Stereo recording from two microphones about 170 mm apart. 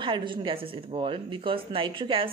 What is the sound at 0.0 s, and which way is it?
Speech, 30° right (ahead or behind).